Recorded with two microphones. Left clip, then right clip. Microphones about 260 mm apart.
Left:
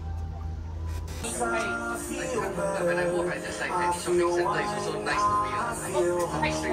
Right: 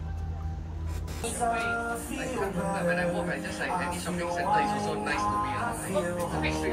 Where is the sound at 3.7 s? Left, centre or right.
Left.